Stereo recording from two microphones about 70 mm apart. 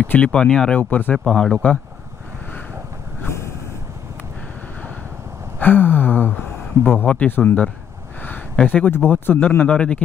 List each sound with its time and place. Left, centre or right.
0.0 s speech: centre
0.7 s speech: left
1.1 s speech: centre
3.2 s vehicle: left
5.6 s gasp: left
6.8 s speech: left
8.6 s speech: left